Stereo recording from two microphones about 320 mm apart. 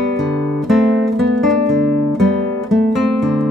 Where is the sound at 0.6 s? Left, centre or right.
Centre.